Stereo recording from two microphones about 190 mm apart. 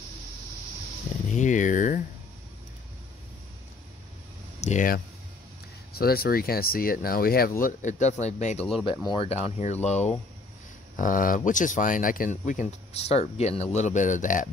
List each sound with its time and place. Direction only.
1.3 s speech: 40° left (ahead or behind)
4.6 s speech: 40° left (ahead or behind)
7.6 s speech: 40° left (ahead or behind)
11.0 s speech: 45° left (ahead or behind)